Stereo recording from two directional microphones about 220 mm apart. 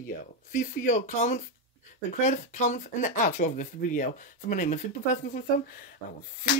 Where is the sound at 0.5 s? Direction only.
35° left (ahead or behind).